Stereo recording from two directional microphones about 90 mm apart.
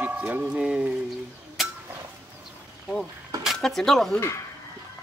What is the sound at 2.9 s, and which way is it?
Speech, 5° left (ahead or behind).